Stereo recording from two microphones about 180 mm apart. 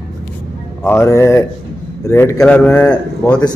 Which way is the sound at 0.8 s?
15° left (ahead or behind).